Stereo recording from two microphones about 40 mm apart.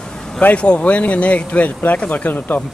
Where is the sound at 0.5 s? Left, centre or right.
Left.